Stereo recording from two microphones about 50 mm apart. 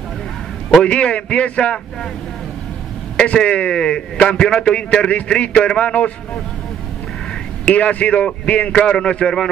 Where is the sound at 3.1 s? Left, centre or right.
Left.